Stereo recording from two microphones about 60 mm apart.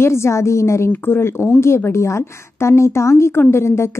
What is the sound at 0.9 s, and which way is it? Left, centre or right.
A woman's voice, left.